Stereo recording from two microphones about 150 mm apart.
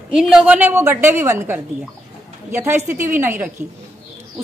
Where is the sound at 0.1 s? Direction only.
5° right (ahead or behind).